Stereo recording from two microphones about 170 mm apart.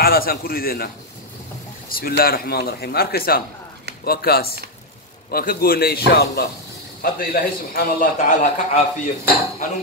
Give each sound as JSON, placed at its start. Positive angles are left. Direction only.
{"t": 0.0, "sound": "speech", "side_deg": 60}
{"t": 8.3, "sound": "a man's voice", "side_deg": 45}